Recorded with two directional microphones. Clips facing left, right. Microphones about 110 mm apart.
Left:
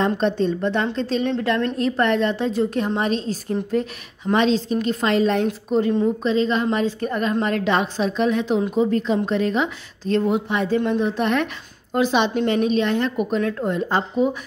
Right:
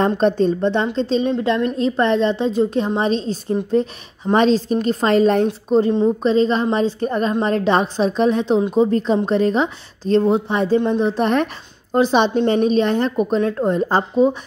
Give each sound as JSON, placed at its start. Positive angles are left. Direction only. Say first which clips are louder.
{"t": 0.0, "sound": "a woman's voice", "louder": "right 4 dB", "side_deg": -40}